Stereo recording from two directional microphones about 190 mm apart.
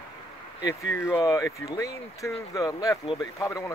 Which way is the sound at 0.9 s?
15° left (ahead or behind).